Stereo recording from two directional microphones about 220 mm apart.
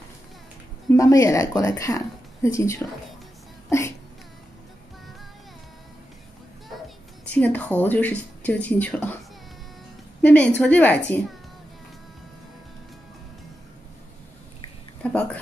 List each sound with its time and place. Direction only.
0.9 s speech: 15° left (ahead or behind)
7.2 s speech: 5° left (ahead or behind)
10.2 s speech: 5° left (ahead or behind)
15.0 s a sound: 5° left (ahead or behind)